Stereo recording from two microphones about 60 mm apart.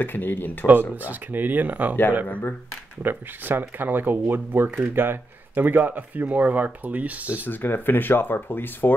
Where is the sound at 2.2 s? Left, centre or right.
Left.